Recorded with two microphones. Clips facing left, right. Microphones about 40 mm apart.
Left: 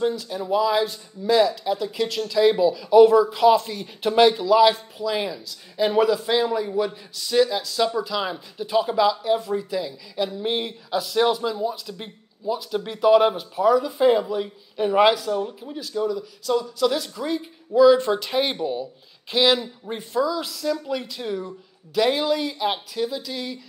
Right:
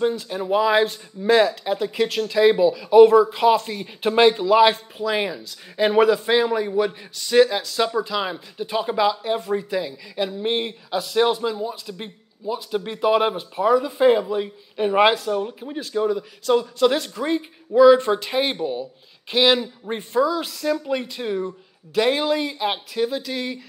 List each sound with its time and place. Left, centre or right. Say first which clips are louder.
0.1 s speech: right 2 dB; right
7.8 s a man's voice: right 1 dB; right
15.8 s speech: right 3 dB; right
18.1 s a man's voice: right 1 dB; centre
19.3 s speech: right 2 dB; right